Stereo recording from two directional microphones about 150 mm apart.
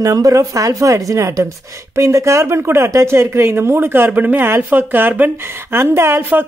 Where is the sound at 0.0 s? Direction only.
20° right (ahead or behind).